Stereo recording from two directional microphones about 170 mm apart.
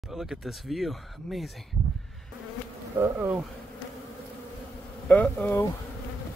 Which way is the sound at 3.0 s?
10° right (ahead or behind).